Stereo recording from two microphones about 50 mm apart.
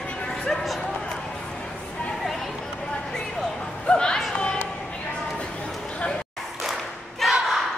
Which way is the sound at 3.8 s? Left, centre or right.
Centre.